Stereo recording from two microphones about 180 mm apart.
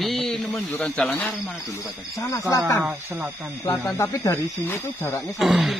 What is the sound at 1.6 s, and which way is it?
Speech, 20° left (ahead or behind).